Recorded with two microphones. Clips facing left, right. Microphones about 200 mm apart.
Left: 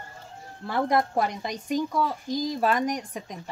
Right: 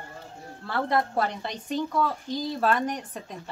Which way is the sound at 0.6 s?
15° left (ahead or behind).